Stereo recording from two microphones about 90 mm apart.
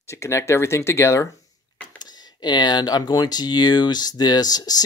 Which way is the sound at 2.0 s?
50° left (ahead or behind).